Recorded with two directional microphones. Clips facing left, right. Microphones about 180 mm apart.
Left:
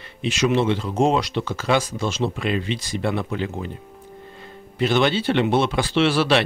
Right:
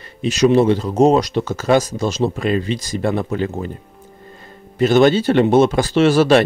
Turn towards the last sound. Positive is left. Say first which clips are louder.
# right 6 dB
turn(degrees=-45)  # may be behind; listen again after turning